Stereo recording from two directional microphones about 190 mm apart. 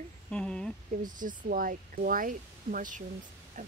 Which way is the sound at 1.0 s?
45° right (ahead or behind).